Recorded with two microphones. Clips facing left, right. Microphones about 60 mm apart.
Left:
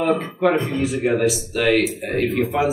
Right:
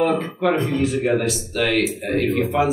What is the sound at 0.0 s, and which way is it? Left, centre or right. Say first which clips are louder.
Speech: left 1 dB; centre.